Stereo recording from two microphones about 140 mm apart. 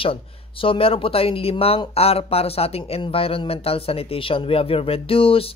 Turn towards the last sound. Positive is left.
turn(degrees=40)  # may be behind; listen again after turning